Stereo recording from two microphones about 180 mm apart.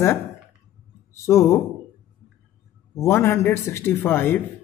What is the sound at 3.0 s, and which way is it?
Speech, 15° left (ahead or behind).